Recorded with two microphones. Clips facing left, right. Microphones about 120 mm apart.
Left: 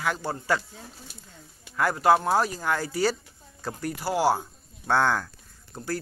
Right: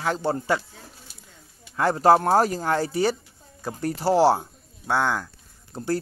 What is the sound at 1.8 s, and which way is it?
Speech, 30° right (ahead or behind).